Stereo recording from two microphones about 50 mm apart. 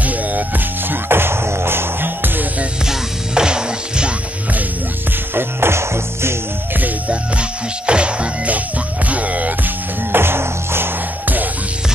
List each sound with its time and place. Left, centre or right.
0.0 s music: right
1.0 s music: right
2.9 s music: centre
5.3 s music: right
7.1 s music: right
10.1 s music: right